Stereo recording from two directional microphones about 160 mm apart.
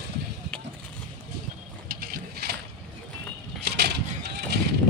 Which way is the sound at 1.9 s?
70° right (ahead or behind).